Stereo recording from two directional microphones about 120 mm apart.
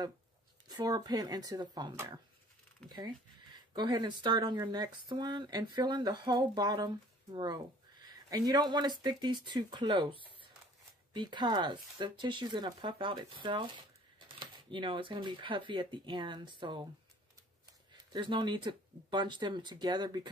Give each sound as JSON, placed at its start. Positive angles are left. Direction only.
{"t": 0.7, "sound": "speech", "side_deg": -35}
{"t": 18.1, "sound": "speech", "side_deg": -40}